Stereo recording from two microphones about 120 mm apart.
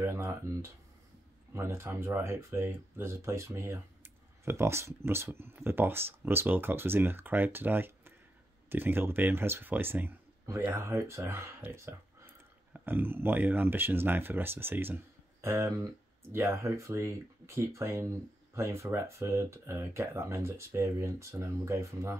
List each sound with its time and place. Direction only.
0.0 s speech: 20° right (ahead or behind)